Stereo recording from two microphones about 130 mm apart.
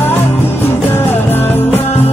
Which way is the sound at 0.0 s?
15° left (ahead or behind).